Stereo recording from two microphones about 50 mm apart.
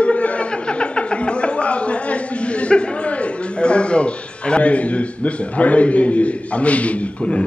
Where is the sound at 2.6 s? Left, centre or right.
Left.